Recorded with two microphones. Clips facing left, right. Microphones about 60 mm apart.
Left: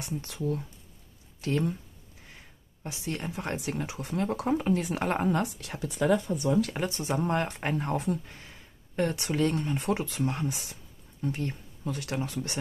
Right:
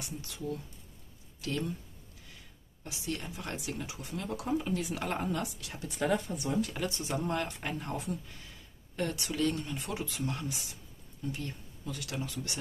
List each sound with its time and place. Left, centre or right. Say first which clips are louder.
0.0 s speech: left 6 dB; left
1.4 s speech: left 6 dB; left
6.7 s speech: left 4 dB; left